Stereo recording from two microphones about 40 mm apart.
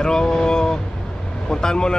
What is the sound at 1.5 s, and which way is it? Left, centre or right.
Vehicle, centre.